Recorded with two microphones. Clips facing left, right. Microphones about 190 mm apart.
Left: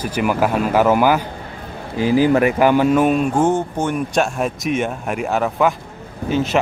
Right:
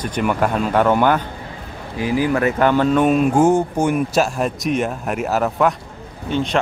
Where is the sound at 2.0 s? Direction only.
30° left (ahead or behind).